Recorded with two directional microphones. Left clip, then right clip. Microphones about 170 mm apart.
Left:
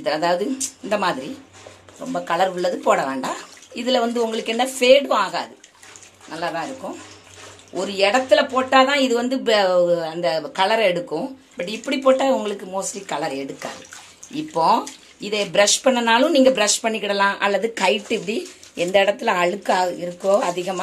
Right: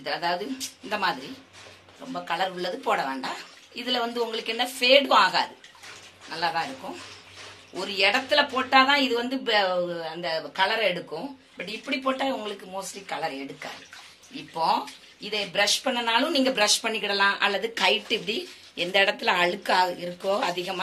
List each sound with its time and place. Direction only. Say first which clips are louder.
0.0 s speech: left 8 dB; 55° left (ahead or behind)
2.2 s speech: left 8 dB; 55° left (ahead or behind)
14.3 s speech: left 7 dB; 60° left (ahead or behind); by 20.8 s 40° left (ahead or behind)